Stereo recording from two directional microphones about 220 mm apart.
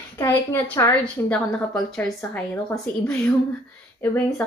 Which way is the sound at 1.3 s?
5° left (ahead or behind).